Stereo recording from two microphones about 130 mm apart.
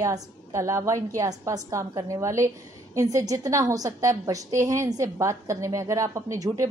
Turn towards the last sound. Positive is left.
turn(degrees=-25)  # may be behind; listen again after turning